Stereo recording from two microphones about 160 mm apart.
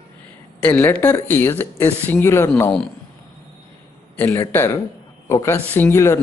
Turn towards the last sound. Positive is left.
turn(degrees=15)  # may be behind; listen again after turning